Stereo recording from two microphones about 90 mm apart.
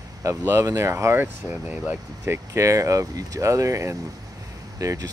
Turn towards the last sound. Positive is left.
turn(degrees=-40)  # may be behind; listen again after turning